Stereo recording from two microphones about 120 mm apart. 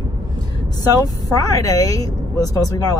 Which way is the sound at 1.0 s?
30° left (ahead or behind).